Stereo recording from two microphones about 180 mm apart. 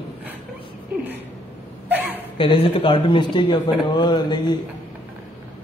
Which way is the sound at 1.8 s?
10° right (ahead or behind).